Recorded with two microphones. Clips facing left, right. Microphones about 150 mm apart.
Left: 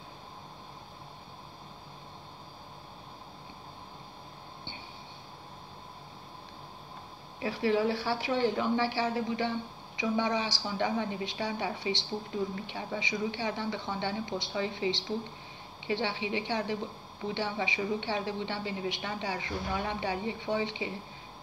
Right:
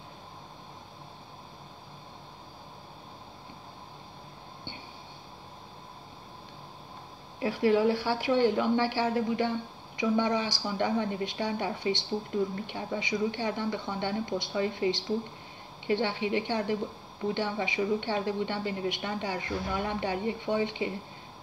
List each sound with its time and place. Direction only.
7.3 s a woman's voice: 55° right (ahead or behind)